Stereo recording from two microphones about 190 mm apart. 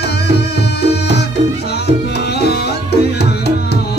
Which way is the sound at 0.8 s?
60° left (ahead or behind).